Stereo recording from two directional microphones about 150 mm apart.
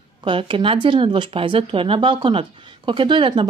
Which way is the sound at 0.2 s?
35° right (ahead or behind).